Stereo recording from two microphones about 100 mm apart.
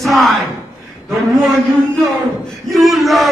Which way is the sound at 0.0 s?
Centre (ahead or behind).